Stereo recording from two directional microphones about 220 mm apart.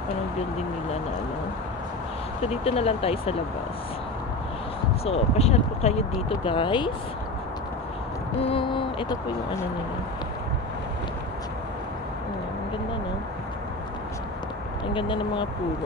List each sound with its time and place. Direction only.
2.4 s speech: 25° left (ahead or behind)
5.0 s speech: 30° left (ahead or behind)
8.4 s speech: 25° left (ahead or behind)
15.0 s speech: 20° left (ahead or behind)